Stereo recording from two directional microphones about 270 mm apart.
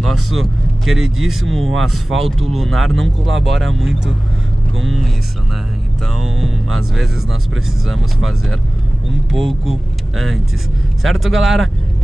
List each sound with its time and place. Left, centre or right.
0.3 s speech: centre
3.3 s speech: right
3.7 s speech: centre
7.8 s speech: centre
9.7 s speech: centre